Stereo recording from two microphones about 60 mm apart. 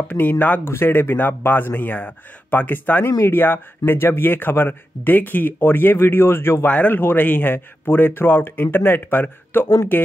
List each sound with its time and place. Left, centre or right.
0.1 s speech: left
6.7 s speech: left